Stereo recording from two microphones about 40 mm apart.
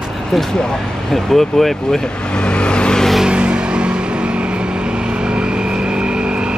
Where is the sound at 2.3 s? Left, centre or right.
Left.